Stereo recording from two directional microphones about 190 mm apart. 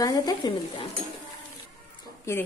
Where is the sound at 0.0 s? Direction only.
20° left (ahead or behind).